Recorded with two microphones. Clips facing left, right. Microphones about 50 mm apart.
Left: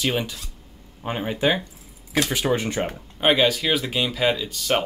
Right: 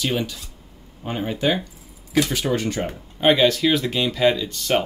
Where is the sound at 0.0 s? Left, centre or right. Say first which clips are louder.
Even; left.